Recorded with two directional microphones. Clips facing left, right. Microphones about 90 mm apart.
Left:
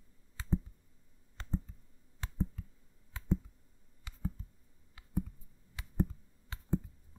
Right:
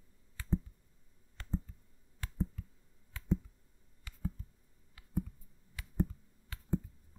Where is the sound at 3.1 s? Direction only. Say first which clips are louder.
Left 2 dB; 20° left (ahead or behind).